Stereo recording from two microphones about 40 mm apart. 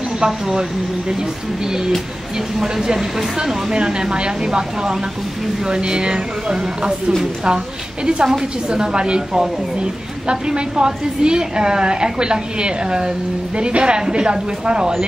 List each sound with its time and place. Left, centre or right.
0.2 s speech: centre
2.3 s speech: centre
3.7 s a woman's voice: right